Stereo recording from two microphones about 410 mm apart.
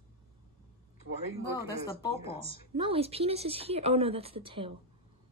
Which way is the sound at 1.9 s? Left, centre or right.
Centre.